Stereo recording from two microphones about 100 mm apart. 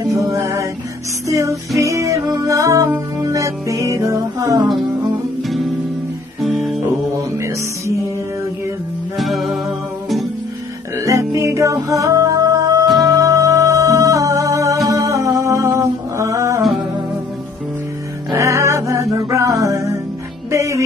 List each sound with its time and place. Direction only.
0.0 s music: 30° right (ahead or behind)
1.8 s music: 30° right (ahead or behind)
6.9 s music: 30° right (ahead or behind)
9.2 s music: centre (ahead or behind)
11.1 s music: 30° right (ahead or behind)
14.9 s humming: 30° right (ahead or behind)
18.3 s music: 30° right (ahead or behind)